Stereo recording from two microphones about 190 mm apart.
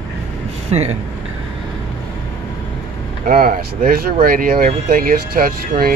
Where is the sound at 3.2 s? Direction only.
50° right (ahead or behind).